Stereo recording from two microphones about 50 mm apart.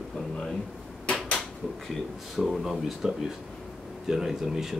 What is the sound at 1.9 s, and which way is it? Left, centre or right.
Speech, centre.